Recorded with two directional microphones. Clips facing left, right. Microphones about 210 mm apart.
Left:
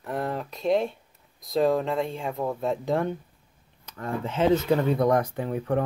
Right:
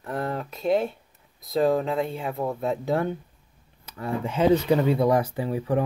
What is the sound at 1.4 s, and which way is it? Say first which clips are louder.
Speech: right 1 dB; centre (ahead or behind).